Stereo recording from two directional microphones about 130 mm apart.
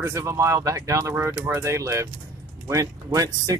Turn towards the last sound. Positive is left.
turn(degrees=-30)  # may be behind; listen again after turning